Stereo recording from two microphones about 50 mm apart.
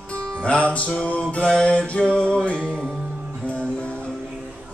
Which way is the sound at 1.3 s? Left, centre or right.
Left.